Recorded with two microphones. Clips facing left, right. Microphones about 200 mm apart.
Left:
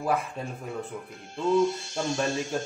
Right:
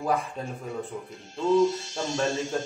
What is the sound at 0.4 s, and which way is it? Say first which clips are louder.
Speech: right 1 dB; 5° left (ahead or behind).